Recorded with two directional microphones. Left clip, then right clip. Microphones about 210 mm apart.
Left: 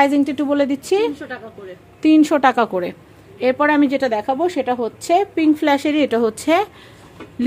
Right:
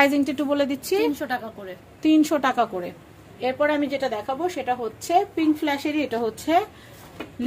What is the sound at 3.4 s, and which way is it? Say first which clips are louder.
A woman's voice: left 7 dB; 55° left (ahead or behind).